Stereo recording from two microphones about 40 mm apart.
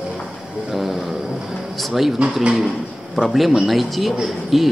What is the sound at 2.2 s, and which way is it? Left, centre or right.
Speech, right.